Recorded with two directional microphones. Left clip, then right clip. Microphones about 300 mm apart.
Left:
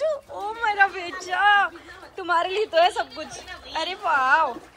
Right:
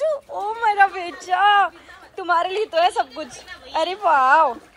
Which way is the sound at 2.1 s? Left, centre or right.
Centre.